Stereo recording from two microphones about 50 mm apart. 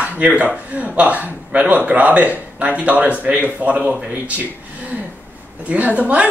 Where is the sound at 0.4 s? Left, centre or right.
Right.